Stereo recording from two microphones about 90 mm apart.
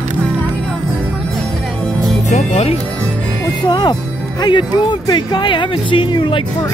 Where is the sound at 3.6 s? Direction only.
55° left (ahead or behind).